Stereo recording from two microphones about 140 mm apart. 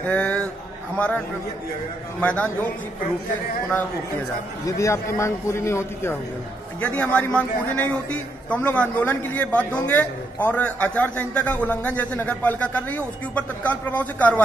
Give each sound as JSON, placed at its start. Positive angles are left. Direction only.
{"t": 0.0, "sound": "a man's voice", "side_deg": 10}
{"t": 4.6, "sound": "a man's voice", "side_deg": 20}